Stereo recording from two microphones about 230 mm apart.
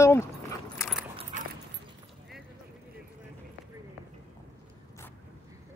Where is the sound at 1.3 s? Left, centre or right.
Right.